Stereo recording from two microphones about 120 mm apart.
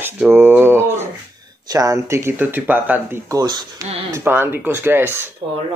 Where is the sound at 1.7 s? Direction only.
30° right (ahead or behind).